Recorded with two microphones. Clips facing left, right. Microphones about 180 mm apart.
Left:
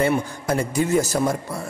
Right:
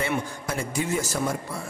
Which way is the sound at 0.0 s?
40° left (ahead or behind).